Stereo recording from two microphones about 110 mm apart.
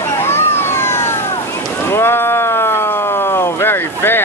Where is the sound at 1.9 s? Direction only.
20° left (ahead or behind).